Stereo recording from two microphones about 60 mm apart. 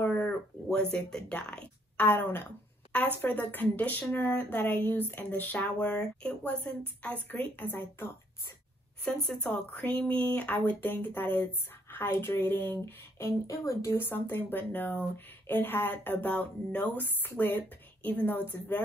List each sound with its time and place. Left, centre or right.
0.0 s a sound: left
0.7 s speech: centre
2.0 s speech: left
5.6 s speech: left
9.0 s speech: centre; by 13.3 s left
13.5 s speech: left
13.9 s a woman's voice: left